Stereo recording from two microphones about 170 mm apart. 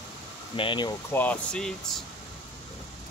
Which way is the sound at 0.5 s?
30° left (ahead or behind).